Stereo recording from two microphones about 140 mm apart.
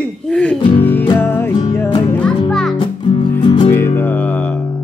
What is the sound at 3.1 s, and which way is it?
Music, 30° left (ahead or behind).